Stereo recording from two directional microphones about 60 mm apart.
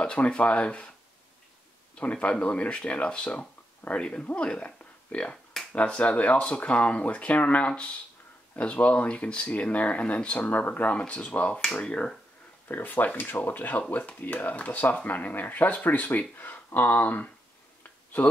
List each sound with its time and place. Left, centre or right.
0.0 s speech: centre
2.0 s speech: left
4.3 s finger snapping: centre
5.8 s speech: left
12.6 s speech: left